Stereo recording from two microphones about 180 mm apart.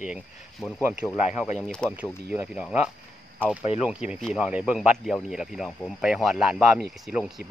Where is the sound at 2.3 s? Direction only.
5° right (ahead or behind).